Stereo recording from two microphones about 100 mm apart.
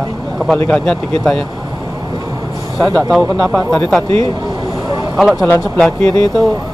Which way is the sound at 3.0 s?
Centre (ahead or behind).